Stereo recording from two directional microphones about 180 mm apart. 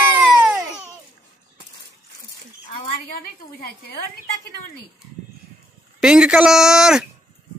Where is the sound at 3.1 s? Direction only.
60° left (ahead or behind).